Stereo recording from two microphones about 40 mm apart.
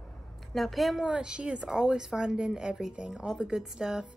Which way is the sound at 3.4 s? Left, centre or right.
Centre.